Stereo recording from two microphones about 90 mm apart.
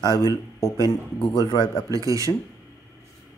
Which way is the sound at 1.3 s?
50° left (ahead or behind).